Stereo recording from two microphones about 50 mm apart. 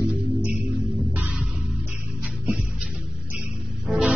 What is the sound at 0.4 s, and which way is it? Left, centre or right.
Music, right.